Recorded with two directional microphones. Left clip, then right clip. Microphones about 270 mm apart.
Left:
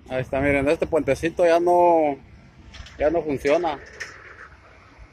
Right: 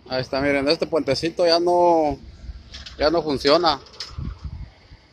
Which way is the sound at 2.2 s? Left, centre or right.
Right.